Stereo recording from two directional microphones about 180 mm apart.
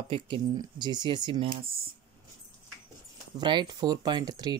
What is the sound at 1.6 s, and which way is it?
Speech, 55° right (ahead or behind).